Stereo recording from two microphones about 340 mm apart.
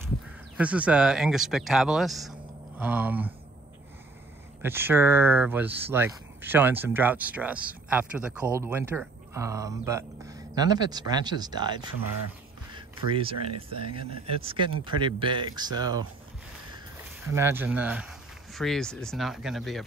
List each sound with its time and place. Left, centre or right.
0.6 s speech: centre
4.6 s speech: centre
17.3 s speech: centre